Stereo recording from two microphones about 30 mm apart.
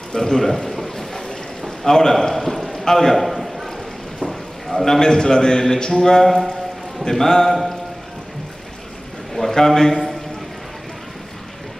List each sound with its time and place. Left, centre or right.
0.1 s a sound: centre
1.9 s a man's voice: centre
2.2 s a sound: centre
2.8 s a man's voice: centre
3.2 s a sound: centre
4.8 s a man's voice: centre
6.2 s speech: centre
7.1 s a man's voice: centre
9.3 s a man's voice: centre